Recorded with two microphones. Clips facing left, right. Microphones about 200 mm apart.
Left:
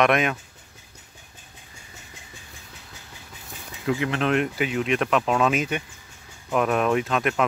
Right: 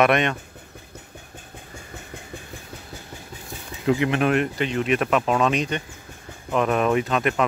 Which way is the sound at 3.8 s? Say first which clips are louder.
Right 4 dB; 15° right (ahead or behind).